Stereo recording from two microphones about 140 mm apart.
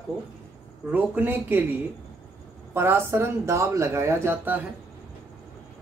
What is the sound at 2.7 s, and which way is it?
Speech, 15° right (ahead or behind).